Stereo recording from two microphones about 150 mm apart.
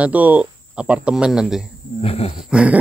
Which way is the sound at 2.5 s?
10° right (ahead or behind).